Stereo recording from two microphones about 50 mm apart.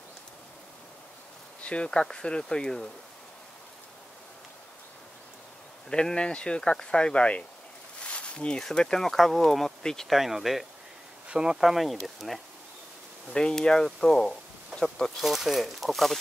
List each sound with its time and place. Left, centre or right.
1.6 s insect: left
1.9 s speech: centre
5.9 s speech: centre
8.0 s a sound: left
8.7 s speech: centre
11.2 s speech: centre
11.6 s speech: centre
13.3 s speech: centre
15.1 s speech: centre